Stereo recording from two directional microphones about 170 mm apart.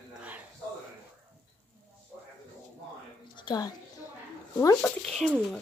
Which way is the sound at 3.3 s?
25° left (ahead or behind).